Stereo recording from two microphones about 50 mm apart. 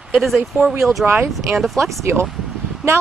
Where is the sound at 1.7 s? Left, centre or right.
Right.